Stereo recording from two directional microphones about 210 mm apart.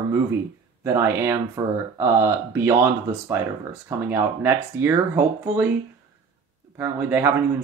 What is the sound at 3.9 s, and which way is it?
Speech, 10° right (ahead or behind).